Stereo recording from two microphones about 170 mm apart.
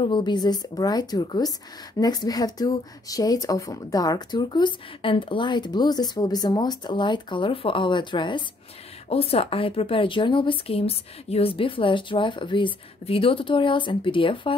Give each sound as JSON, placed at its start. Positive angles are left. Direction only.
{"t": 0.0, "sound": "a woman's voice", "side_deg": 25}